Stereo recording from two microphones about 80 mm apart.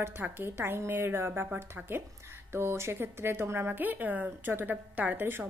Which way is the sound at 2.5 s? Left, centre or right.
Right.